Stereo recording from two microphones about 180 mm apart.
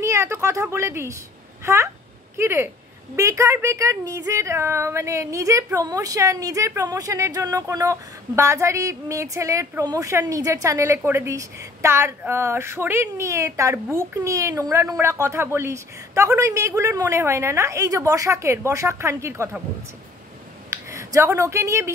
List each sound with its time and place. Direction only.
0.0 s a woman's voice: 15° right (ahead or behind)
20.7 s speech: 15° right (ahead or behind)